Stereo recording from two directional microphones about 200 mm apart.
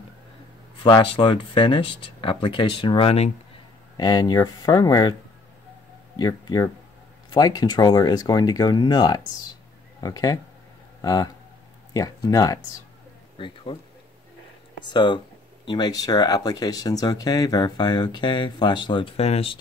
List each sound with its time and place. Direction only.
0.8 s speech: 25° left (ahead or behind)
6.1 s speech: 20° left (ahead or behind)
14.9 s speech: 25° left (ahead or behind)